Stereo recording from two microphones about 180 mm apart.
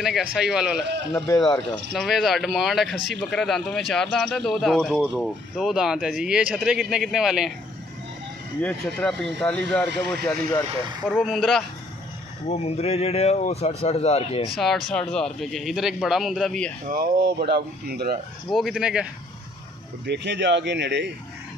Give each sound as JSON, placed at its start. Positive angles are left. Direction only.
{"t": 0.0, "sound": "speech", "side_deg": 0}
{"t": 1.1, "sound": "speech", "side_deg": 20}
{"t": 2.0, "sound": "speech", "side_deg": 0}
{"t": 8.6, "sound": "speech", "side_deg": 5}
{"t": 11.2, "sound": "speech", "side_deg": 0}
{"t": 12.4, "sound": "speech", "side_deg": 35}
{"t": 14.9, "sound": "speech", "side_deg": 5}
{"t": 16.9, "sound": "speech", "side_deg": -55}
{"t": 18.5, "sound": "speech", "side_deg": 0}
{"t": 20.1, "sound": "speech", "side_deg": -75}